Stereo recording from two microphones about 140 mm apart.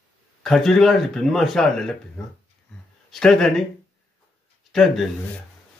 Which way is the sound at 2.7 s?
5° left (ahead or behind).